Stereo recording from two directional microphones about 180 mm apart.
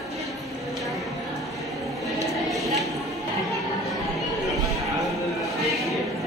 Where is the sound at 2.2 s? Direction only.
Centre (ahead or behind).